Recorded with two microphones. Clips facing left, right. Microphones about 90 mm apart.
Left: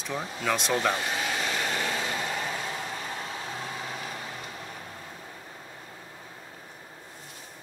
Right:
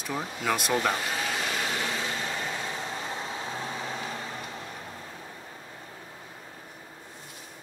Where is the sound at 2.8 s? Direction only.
20° right (ahead or behind).